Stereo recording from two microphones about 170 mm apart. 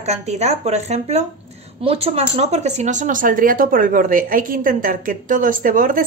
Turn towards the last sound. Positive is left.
turn(degrees=-55)  # may be behind; listen again after turning